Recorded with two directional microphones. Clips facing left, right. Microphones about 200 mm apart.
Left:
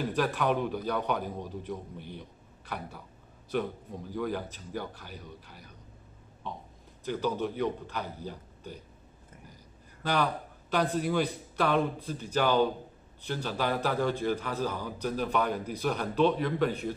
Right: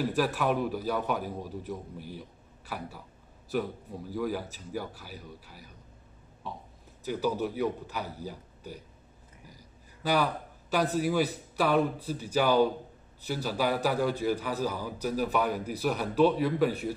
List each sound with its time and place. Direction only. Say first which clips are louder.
0.0 s a man's voice: right 1 dB; 5° right (ahead or behind)
10.0 s a man's voice: right 1 dB; 5° right (ahead or behind)